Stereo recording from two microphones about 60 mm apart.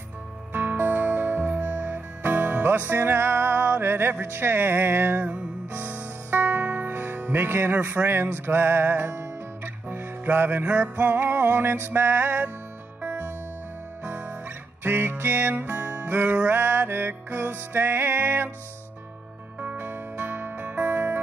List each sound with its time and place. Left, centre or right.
0.5 s music: right
14.0 s guitar: right
14.8 s music: right
19.6 s music: right